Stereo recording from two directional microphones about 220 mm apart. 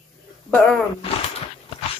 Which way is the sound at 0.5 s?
5° left (ahead or behind).